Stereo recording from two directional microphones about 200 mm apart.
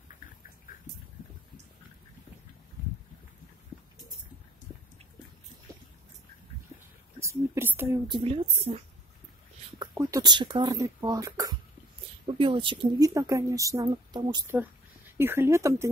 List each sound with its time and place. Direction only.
7.2 s a woman's voice: 15° right (ahead or behind)
8.1 s speech: 30° right (ahead or behind); by 15.9 s 15° right (ahead or behind)